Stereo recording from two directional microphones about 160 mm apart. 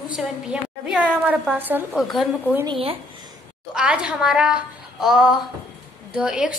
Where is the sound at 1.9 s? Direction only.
Centre (ahead or behind).